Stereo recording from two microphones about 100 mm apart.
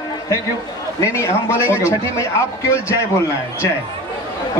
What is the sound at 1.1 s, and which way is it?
A man's voice, 30° left (ahead or behind).